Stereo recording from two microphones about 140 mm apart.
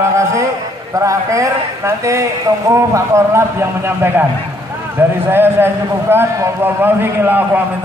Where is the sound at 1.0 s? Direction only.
20° right (ahead or behind).